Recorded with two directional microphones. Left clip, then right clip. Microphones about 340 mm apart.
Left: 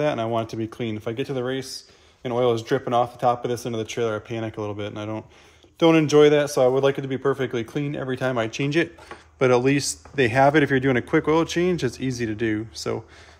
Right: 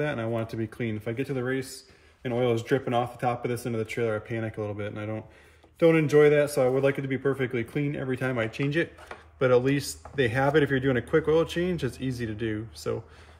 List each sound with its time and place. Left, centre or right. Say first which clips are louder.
0.0 s a man's voice: left 6 dB; centre